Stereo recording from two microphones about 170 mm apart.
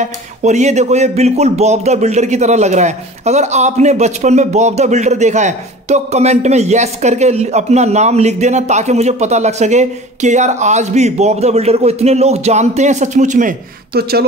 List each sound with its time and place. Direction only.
0.0 s speech: 45° right (ahead or behind)